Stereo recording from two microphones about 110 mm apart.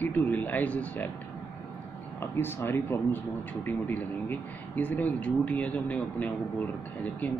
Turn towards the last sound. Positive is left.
turn(degrees=15)  # may be behind; listen again after turning